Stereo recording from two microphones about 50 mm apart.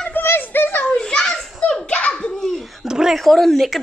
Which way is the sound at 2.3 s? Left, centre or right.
Centre.